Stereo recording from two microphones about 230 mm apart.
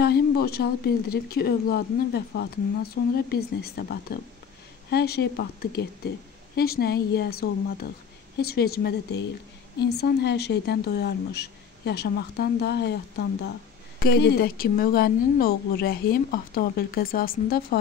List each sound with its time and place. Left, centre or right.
0.0 s speech: left
13.9 s a woman's voice: left